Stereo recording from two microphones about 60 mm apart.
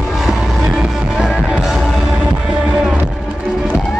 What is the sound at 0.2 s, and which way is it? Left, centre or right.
Music, centre.